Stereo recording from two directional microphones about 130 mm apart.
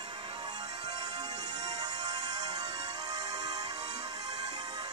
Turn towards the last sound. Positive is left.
turn(degrees=-30)  # may be behind; listen again after turning